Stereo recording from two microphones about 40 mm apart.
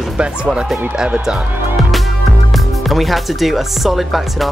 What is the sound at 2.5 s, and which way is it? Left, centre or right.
Speech, centre.